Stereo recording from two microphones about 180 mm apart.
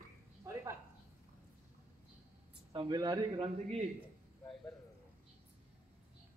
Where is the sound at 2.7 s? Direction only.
25° right (ahead or behind).